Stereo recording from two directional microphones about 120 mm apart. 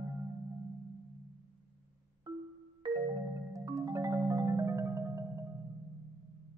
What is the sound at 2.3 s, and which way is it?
Marimba, 40° right (ahead or behind).